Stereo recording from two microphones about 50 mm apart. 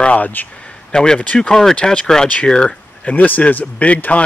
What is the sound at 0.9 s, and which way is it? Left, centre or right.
Speech, centre.